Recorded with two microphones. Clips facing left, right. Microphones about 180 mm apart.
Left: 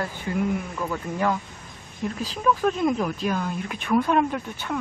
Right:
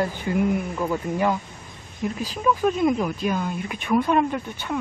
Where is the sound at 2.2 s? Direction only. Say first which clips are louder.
Right 1 dB; 5° right (ahead or behind).